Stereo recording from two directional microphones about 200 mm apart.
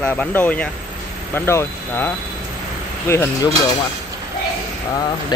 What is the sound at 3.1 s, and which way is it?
Speech, 10° left (ahead or behind).